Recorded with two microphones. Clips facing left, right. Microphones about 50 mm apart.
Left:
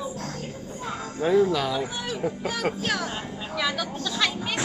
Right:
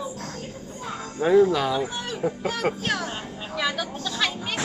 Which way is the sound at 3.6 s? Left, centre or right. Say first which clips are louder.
Right 1 dB; centre.